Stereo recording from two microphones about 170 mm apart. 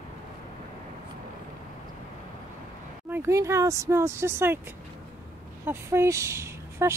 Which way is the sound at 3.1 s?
15° right (ahead or behind).